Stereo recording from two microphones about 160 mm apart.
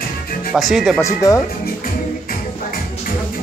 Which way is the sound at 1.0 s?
20° left (ahead or behind).